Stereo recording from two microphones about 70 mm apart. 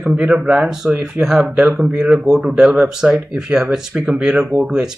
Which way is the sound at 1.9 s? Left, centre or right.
Centre.